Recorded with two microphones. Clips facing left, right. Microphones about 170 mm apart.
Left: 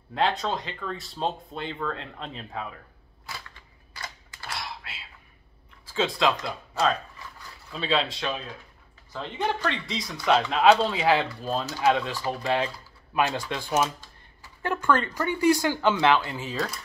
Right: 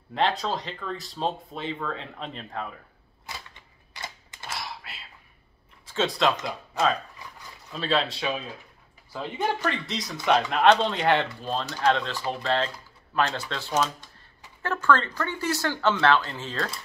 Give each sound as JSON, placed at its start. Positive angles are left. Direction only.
{"t": 0.1, "sound": "speech", "side_deg": 0}
{"t": 3.3, "sound": "typewriter", "side_deg": -20}
{"t": 4.5, "sound": "a sound", "side_deg": 0}
{"t": 5.9, "sound": "speech", "side_deg": 0}
{"t": 7.7, "sound": "speech", "side_deg": 0}